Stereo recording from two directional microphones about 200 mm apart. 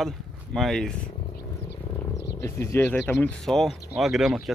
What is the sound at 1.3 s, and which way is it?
Wild animals, 55° left (ahead or behind).